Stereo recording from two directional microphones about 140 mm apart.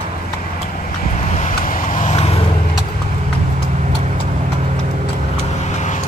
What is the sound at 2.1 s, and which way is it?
Vehicle, 45° left (ahead or behind).